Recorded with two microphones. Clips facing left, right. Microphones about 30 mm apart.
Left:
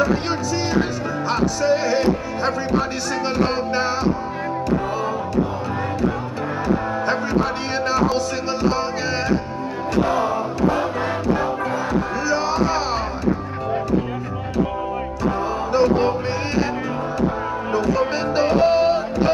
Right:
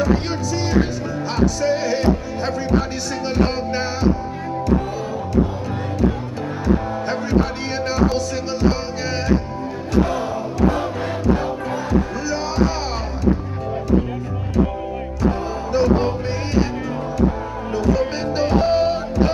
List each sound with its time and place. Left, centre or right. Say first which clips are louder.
1.3 s music: even; centre
10.0 s music: left 3 dB; centre
15.7 s music: even; centre
17.7 s music: right 1 dB; centre